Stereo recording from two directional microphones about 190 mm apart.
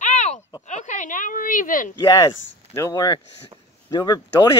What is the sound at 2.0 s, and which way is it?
Speech, 15° left (ahead or behind).